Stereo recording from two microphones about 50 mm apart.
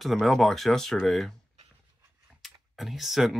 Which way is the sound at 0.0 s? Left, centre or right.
Centre.